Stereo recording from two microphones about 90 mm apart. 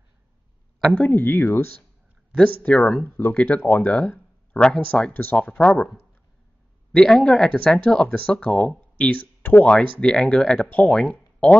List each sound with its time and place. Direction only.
0.9 s speech: 20° left (ahead or behind)
2.3 s speech: 15° left (ahead or behind)
5.1 s speech: 20° left (ahead or behind)
6.9 s speech: 5° left (ahead or behind)
9.9 s speech: 5° left (ahead or behind)